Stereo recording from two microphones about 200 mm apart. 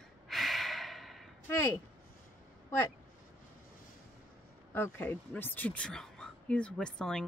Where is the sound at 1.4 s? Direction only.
15° left (ahead or behind).